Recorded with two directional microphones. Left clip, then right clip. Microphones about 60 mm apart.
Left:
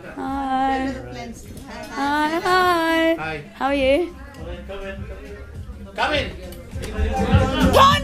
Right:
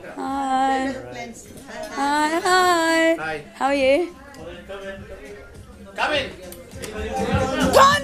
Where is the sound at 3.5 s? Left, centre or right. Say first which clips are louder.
Even; right.